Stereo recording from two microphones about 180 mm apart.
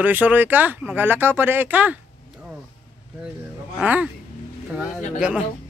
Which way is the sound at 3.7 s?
10° right (ahead or behind).